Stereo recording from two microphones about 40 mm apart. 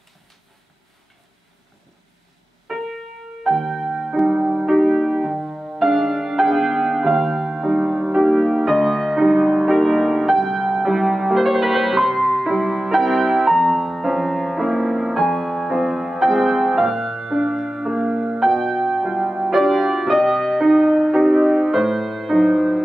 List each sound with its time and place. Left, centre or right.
2.7 s keyboard: centre
3.4 s music: centre
4.7 s music: centre
18.4 s music: centre